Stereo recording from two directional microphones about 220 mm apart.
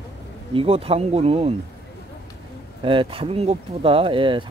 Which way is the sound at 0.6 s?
25° right (ahead or behind).